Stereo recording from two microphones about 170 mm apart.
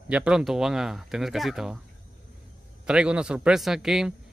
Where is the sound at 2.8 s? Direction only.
5° right (ahead or behind).